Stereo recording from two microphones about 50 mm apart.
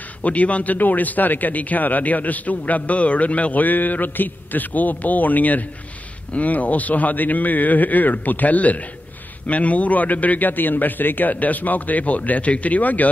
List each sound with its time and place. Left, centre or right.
0.2 s a man's voice: left